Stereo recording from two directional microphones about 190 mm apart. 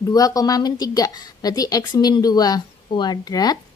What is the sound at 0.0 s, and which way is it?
A woman's voice, 20° left (ahead or behind).